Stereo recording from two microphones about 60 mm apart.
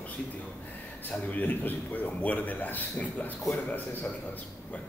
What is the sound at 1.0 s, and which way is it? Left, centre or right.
A man's voice, left.